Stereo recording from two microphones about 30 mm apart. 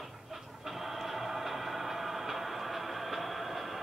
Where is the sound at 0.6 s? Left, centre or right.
Centre.